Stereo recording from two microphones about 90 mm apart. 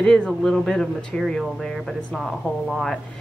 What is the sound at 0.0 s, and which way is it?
Speech, 5° left (ahead or behind).